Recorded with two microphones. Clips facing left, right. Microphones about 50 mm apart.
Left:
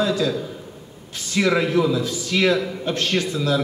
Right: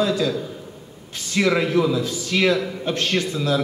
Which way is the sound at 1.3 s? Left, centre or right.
Centre.